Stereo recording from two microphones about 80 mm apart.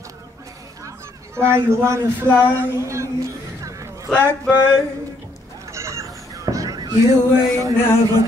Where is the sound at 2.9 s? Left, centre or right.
Right.